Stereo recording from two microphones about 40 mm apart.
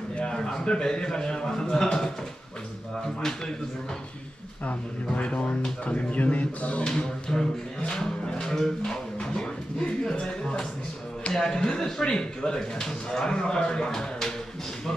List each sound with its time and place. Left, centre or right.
0.2 s speech: centre
3.2 s speech: centre
4.6 s speech: left
7.3 s speech: left